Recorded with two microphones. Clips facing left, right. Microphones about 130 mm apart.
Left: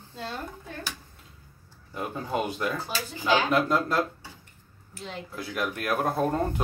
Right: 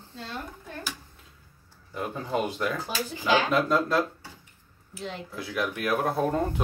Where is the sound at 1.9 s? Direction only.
5° left (ahead or behind).